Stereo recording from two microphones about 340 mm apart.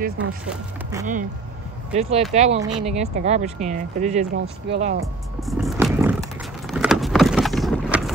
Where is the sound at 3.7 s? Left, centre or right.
Right.